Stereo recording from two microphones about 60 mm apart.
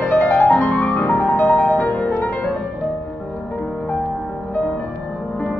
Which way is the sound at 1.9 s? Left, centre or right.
Left.